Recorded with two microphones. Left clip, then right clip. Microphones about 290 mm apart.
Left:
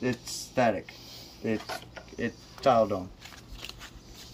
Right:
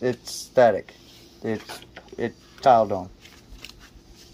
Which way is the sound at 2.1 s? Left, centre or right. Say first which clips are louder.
Right 5 dB; centre.